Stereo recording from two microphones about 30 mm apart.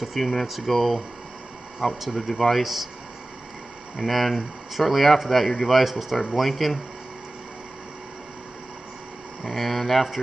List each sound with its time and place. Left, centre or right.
0.0 s speech: centre
3.9 s speech: centre
5.9 s speech: centre
9.4 s speech: centre